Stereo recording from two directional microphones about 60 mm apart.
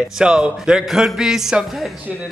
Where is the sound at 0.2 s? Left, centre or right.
Centre.